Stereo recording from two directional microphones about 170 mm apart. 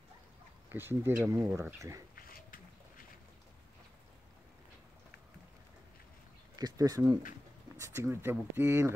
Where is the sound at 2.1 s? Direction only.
60° left (ahead or behind).